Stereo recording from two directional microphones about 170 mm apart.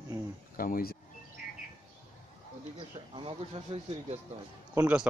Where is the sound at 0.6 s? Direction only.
55° left (ahead or behind).